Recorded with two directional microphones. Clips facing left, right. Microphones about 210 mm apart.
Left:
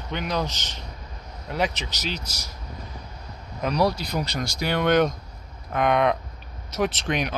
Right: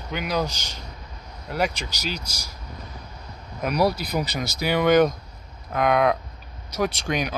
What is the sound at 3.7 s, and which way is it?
Speech, 5° right (ahead or behind).